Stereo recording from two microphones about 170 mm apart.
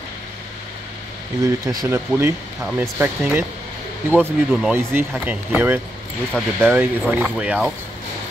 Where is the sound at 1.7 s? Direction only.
20° right (ahead or behind).